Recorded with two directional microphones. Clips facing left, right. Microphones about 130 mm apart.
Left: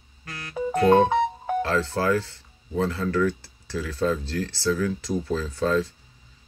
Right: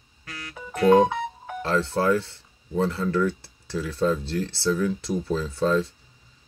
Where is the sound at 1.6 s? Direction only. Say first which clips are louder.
Right 3 dB; 25° right (ahead or behind).